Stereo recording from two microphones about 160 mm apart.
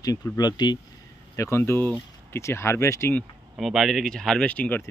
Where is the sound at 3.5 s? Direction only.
Centre (ahead or behind).